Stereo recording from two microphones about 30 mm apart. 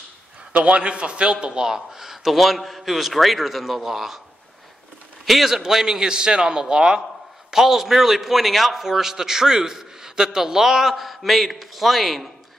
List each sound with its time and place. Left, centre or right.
0.7 s a man's voice: right; by 2.3 s centre
2.3 s a man's voice: centre
5.2 s a man's voice: centre
5.7 s a man's voice: centre
7.5 s a man's voice: centre